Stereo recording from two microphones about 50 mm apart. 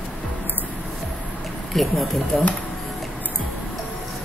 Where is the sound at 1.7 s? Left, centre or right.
Centre.